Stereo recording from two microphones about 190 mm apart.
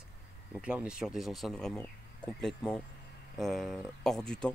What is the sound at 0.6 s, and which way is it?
Speech, 5° right (ahead or behind).